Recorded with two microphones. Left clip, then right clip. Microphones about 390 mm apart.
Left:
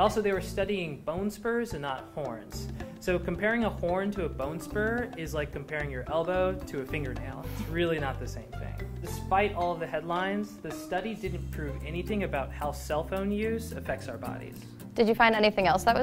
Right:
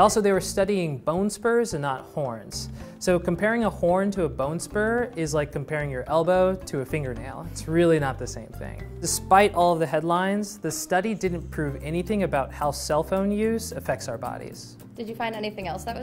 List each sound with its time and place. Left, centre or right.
0.0 s speech: right
3.1 s speech: right
7.7 s speech: right
9.3 s speech: right
15.0 s a woman's voice: left